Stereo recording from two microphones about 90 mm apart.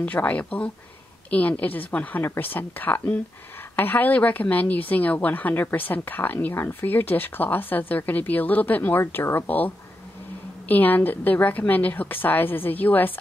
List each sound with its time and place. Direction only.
0.0 s a woman's voice: 20° left (ahead or behind)
10.7 s a woman's voice: 20° left (ahead or behind)